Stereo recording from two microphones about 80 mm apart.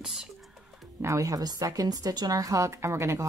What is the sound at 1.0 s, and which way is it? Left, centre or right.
A woman's voice, right.